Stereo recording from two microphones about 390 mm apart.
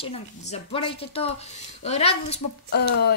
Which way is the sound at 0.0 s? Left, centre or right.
Centre.